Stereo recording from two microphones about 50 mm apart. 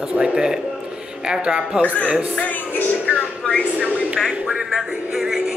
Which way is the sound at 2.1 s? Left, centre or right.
Right.